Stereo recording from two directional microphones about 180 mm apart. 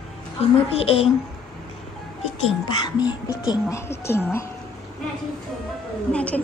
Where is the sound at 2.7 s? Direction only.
25° left (ahead or behind).